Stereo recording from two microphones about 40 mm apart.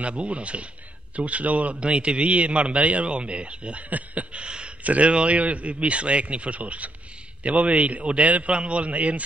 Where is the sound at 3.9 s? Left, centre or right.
Right.